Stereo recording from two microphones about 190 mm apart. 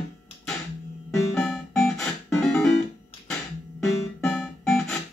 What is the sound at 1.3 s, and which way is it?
Music, 5° left (ahead or behind).